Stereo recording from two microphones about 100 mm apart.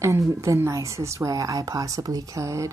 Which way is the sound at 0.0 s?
30° right (ahead or behind).